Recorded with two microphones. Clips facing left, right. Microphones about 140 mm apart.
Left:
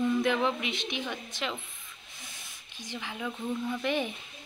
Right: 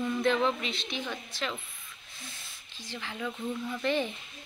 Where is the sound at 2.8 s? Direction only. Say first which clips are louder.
Even; 15° left (ahead or behind).